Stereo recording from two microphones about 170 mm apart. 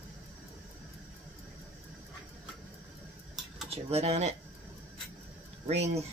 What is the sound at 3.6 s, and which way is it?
Speech, 35° right (ahead or behind).